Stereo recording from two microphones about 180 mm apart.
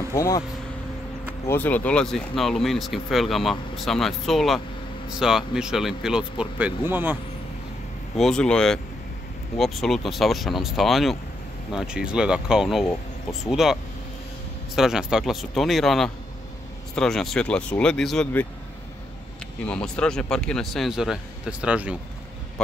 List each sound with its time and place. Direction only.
0.1 s speech: 20° left (ahead or behind)
1.5 s speech: 10° left (ahead or behind); by 7.2 s 10° right (ahead or behind)
8.2 s speech: 5° left (ahead or behind)
14.8 s speech: 5° right (ahead or behind)
19.6 s speech: 5° left (ahead or behind)